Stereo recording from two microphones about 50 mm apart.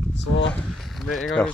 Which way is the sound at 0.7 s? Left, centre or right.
Centre.